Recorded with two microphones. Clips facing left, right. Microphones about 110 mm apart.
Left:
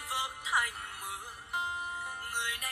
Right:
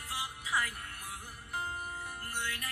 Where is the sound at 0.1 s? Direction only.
20° left (ahead or behind).